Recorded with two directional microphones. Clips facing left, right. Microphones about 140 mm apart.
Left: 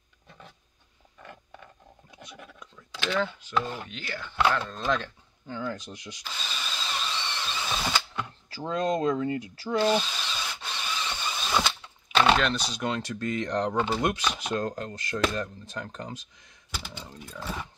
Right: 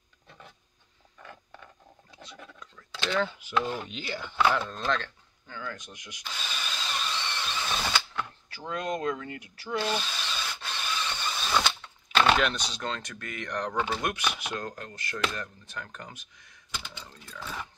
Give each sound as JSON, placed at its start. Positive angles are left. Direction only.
{"t": 2.1, "sound": "a sound", "side_deg": 10}
{"t": 3.1, "sound": "speech", "side_deg": -5}
{"t": 4.5, "sound": "speech", "side_deg": -5}
{"t": 5.5, "sound": "speech", "side_deg": 30}
{"t": 6.3, "sound": "drill", "side_deg": -5}
{"t": 7.5, "sound": "mechanisms", "side_deg": 10}
{"t": 8.5, "sound": "speech", "side_deg": 30}
{"t": 9.9, "sound": "a sound", "side_deg": 5}
{"t": 12.6, "sound": "speech", "side_deg": 15}
{"t": 13.0, "sound": "speech", "side_deg": 25}
{"t": 17.0, "sound": "speech", "side_deg": 15}